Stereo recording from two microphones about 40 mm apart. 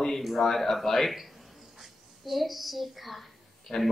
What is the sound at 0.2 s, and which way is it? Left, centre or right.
A man's voice, centre.